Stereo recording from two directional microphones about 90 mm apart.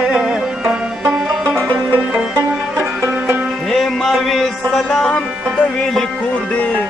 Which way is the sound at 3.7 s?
5° left (ahead or behind).